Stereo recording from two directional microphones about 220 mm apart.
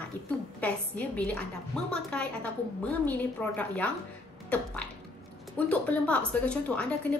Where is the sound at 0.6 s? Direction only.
5° left (ahead or behind).